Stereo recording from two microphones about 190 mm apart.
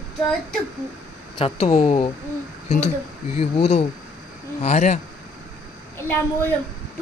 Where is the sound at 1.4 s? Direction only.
35° left (ahead or behind).